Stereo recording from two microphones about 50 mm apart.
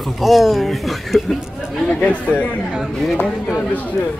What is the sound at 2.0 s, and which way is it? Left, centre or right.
Speech, left.